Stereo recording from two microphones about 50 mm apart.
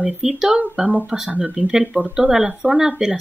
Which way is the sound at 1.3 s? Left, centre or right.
Right.